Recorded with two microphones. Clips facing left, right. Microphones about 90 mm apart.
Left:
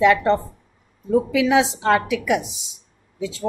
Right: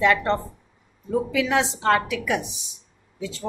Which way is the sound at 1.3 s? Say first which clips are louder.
Left 4 dB; 10° left (ahead or behind).